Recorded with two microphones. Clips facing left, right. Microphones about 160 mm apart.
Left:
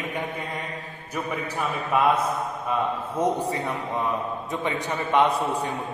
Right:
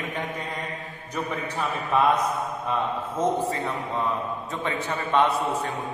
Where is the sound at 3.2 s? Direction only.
15° left (ahead or behind).